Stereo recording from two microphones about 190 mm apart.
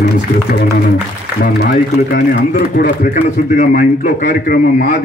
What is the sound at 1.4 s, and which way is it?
A man's voice, 55° left (ahead or behind).